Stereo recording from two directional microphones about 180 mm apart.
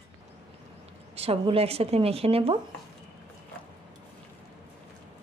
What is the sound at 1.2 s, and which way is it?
Speech, 35° right (ahead or behind).